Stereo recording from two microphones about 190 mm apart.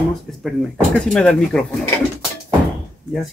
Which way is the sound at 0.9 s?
5° left (ahead or behind).